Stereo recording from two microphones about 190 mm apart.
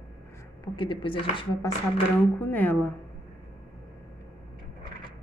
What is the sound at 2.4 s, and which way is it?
Speech, 10° left (ahead or behind).